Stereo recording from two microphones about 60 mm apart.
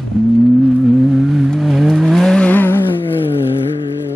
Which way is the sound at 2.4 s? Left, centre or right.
Left.